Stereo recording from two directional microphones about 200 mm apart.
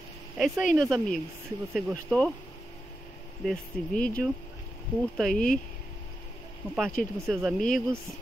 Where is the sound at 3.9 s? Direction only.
45° left (ahead or behind).